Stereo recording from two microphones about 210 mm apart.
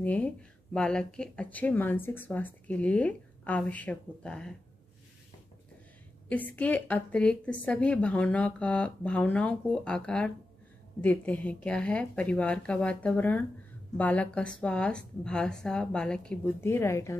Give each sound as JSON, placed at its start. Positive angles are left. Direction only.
{"t": 0.0, "sound": "speech", "side_deg": 5}
{"t": 6.2, "sound": "a woman's voice", "side_deg": 5}